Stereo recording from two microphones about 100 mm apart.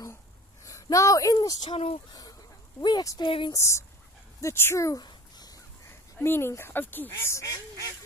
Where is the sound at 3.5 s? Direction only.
30° left (ahead or behind).